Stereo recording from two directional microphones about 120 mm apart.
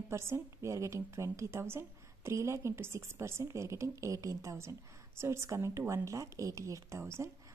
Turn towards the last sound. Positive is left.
turn(degrees=-25)  # may be behind; listen again after turning